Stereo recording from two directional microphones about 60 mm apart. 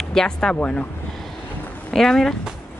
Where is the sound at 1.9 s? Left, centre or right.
Centre.